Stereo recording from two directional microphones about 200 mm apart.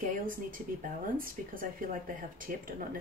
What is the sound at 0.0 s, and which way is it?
Speech, 45° right (ahead or behind).